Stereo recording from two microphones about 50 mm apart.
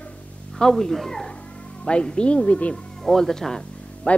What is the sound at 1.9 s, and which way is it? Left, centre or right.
Speech, left.